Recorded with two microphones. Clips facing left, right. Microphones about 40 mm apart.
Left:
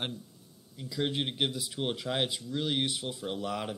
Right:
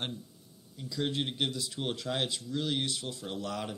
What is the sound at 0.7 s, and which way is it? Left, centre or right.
Speech, centre.